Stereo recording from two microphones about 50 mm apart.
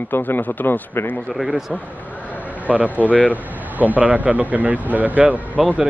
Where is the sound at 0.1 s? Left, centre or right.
Left.